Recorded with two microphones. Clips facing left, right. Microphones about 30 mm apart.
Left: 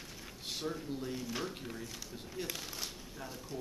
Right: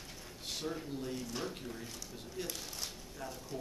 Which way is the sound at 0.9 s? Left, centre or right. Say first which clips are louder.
Left 1 dB; centre.